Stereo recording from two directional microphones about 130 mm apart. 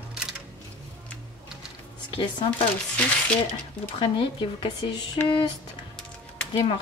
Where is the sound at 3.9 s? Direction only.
40° left (ahead or behind).